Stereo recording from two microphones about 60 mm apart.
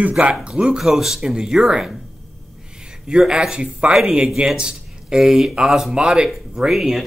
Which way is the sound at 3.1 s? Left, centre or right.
Centre.